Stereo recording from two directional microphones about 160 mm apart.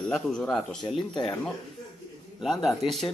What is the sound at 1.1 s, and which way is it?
Speech, 30° left (ahead or behind).